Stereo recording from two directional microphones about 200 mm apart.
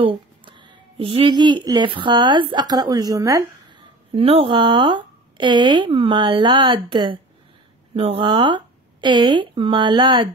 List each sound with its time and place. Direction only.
0.0 s speech: 25° right (ahead or behind)
4.1 s speech: 30° right (ahead or behind)